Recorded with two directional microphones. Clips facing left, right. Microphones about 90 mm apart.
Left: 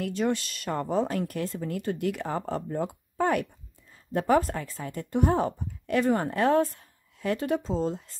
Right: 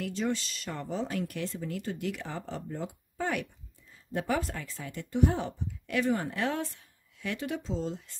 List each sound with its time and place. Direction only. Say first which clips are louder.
0.0 s speech: left 4 dB; 55° left (ahead or behind)